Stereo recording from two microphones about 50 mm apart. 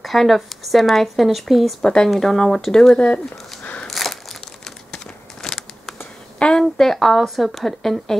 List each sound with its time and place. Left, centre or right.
0.0 s speech: centre
1.8 s speech: centre
3.8 s crumpling: centre
6.4 s a sound: centre
6.8 s speech: centre